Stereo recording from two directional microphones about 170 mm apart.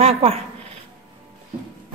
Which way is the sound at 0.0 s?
35° right (ahead or behind).